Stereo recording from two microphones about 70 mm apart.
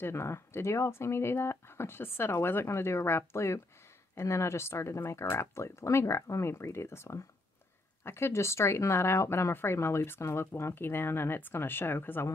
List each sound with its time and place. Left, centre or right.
0.0 s speech: left